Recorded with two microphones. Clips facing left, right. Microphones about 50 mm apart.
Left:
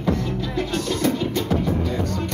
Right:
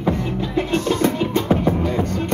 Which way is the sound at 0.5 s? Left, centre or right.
Right.